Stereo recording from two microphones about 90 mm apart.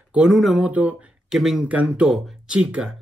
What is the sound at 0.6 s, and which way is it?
Speech, 15° right (ahead or behind).